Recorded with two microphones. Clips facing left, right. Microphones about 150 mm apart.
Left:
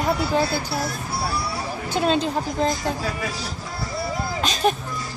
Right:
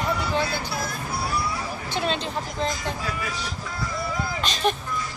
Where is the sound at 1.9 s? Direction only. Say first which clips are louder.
Left 7 dB; 40° left (ahead or behind).